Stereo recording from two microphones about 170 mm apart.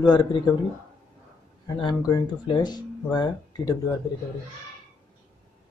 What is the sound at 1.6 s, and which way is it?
Speech, 25° left (ahead or behind).